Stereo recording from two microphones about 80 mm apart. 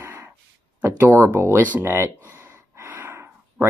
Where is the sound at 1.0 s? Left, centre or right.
Right.